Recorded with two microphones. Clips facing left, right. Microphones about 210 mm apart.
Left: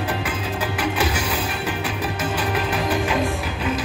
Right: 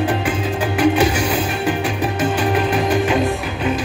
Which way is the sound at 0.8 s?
30° right (ahead or behind).